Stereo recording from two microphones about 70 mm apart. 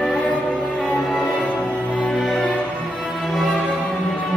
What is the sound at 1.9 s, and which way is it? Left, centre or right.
Music, centre.